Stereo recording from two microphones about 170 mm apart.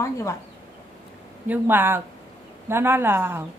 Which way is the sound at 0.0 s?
20° left (ahead or behind).